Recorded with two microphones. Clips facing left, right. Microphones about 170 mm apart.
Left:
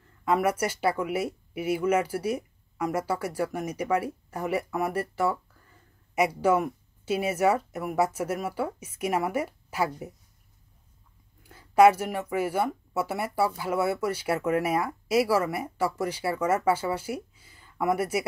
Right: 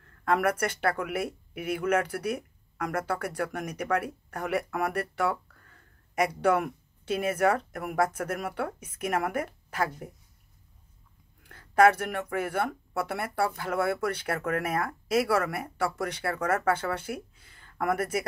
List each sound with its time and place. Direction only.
0.2 s speech: 10° left (ahead or behind)
1.0 s speech: 55° right (ahead or behind)
1.8 s speech: 10° left (ahead or behind)
11.4 s speech: 10° left (ahead or behind)